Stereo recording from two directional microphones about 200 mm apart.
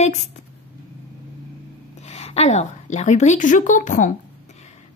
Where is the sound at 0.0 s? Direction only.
35° left (ahead or behind).